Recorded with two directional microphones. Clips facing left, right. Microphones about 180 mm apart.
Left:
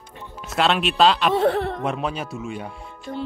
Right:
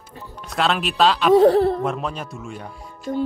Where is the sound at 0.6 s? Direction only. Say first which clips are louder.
Left 1 dB; centre (ahead or behind).